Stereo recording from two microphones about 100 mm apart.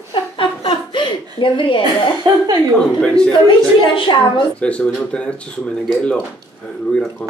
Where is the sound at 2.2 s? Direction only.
45° right (ahead or behind).